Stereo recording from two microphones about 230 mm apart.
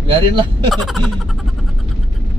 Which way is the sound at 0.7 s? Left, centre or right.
Centre.